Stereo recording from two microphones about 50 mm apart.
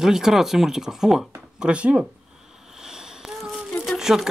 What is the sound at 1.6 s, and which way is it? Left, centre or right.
Speech, right.